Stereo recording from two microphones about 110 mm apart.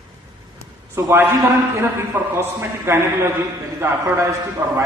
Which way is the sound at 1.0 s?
25° right (ahead or behind).